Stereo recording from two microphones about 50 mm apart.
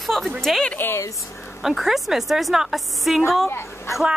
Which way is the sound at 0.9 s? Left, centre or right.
Left.